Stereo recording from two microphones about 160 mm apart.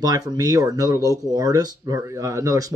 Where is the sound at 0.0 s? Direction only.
25° right (ahead or behind).